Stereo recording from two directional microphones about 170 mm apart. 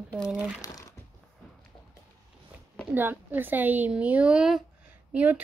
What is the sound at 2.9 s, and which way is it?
A woman's voice, 10° right (ahead or behind).